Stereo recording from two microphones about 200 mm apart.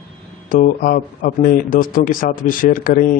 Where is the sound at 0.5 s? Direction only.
45° left (ahead or behind).